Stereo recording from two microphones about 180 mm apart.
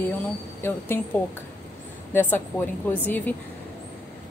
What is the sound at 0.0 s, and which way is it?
A woman's voice, 10° left (ahead or behind).